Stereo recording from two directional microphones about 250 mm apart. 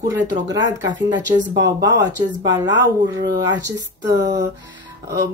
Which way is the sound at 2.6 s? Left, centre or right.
Right.